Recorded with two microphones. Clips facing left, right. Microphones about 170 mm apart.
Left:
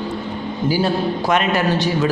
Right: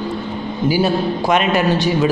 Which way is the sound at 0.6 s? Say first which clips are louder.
Right 2 dB; 15° right (ahead or behind).